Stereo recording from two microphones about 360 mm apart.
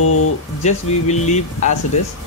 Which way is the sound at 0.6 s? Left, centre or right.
Centre.